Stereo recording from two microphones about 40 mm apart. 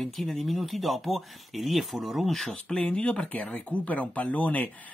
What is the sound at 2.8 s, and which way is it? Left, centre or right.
Speech, left.